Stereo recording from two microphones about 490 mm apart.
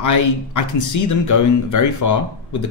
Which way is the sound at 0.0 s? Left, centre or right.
Left.